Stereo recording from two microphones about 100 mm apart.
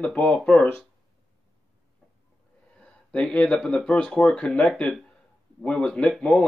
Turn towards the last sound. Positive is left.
turn(degrees=5)  # may be behind; listen again after turning